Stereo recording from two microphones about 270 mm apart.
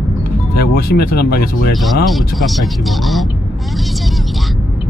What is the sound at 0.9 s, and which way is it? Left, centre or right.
Speech, left.